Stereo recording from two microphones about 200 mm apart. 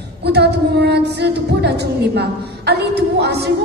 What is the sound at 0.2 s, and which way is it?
A woman's voice, 55° right (ahead or behind).